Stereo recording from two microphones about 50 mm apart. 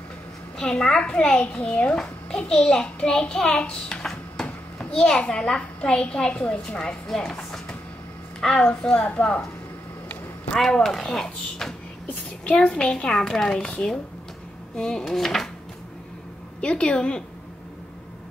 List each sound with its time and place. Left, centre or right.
0.6 s a child's voice: centre
1.4 s a woman's voice: left
4.0 s a sound: centre
4.7 s a sound: centre
5.3 s a child's voice: centre
7.2 s a child's voice: centre
8.8 s a woman's voice: left
10.5 s a child's voice: centre
16.6 s a woman's voice: centre